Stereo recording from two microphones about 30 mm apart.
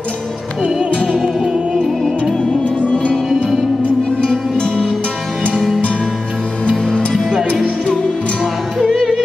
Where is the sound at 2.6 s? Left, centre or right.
Left.